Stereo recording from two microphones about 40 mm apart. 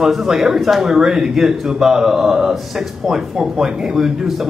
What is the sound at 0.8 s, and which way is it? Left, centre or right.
Speech, centre.